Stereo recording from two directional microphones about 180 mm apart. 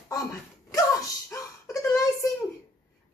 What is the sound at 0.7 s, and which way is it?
Wail, 20° left (ahead or behind).